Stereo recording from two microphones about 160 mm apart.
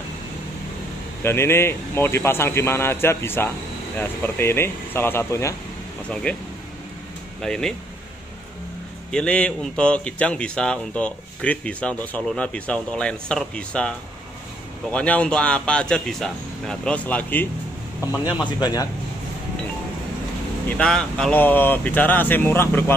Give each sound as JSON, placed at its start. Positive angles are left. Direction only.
{"t": 1.2, "sound": "speech", "side_deg": 15}
{"t": 6.3, "sound": "speech", "side_deg": 10}
{"t": 7.4, "sound": "speech", "side_deg": 5}
{"t": 9.1, "sound": "speech", "side_deg": 5}
{"t": 18.0, "sound": "speech", "side_deg": 25}
{"t": 20.6, "sound": "speech", "side_deg": 5}